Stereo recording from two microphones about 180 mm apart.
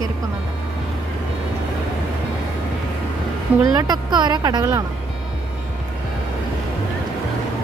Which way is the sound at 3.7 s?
20° right (ahead or behind).